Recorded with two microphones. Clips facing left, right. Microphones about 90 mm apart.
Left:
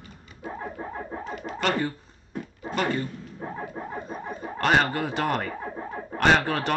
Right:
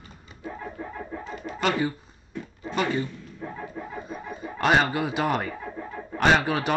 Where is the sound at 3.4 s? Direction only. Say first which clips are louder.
Left 1 dB; 35° left (ahead or behind).